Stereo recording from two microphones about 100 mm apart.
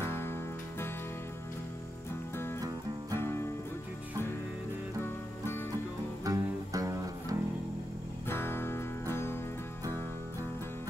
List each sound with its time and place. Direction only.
0.0 s music: 25° left (ahead or behind)
3.2 s music: 25° left (ahead or behind)
6.2 s music: 35° right (ahead or behind)
8.3 s music: 25° left (ahead or behind)